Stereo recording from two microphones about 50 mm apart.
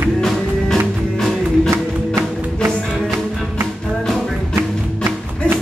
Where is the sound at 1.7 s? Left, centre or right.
Right.